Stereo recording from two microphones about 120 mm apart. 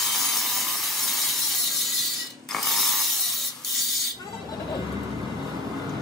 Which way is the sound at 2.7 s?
Centre (ahead or behind).